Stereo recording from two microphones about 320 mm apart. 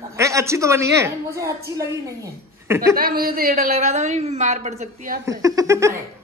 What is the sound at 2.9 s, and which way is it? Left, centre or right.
Speech, right.